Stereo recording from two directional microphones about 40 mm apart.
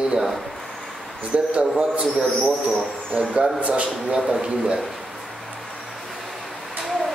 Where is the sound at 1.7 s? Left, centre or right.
Centre.